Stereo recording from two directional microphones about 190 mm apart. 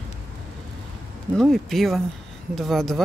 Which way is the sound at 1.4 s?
Centre (ahead or behind).